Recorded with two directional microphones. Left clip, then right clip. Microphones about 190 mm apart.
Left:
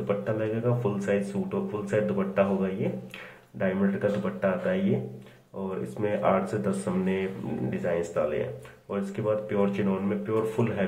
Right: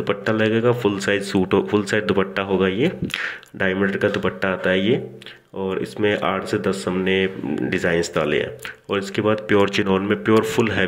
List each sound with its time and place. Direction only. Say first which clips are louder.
0.0 s speech: right 8 dB; 50° right (ahead or behind)
6.0 s speech: right 4 dB; 45° right (ahead or behind)